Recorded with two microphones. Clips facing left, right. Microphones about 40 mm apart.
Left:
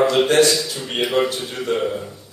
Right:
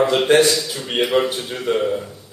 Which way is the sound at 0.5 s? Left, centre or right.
Centre.